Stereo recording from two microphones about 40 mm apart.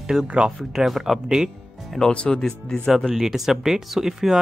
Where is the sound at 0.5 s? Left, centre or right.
Centre.